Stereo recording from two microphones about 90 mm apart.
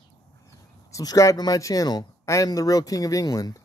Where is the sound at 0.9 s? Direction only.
40° left (ahead or behind).